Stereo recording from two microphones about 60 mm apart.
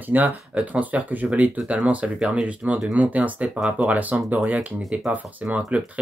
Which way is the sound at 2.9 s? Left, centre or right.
Right.